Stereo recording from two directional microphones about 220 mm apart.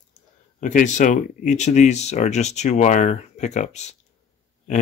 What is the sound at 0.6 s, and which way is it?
Speech, 35° left (ahead or behind).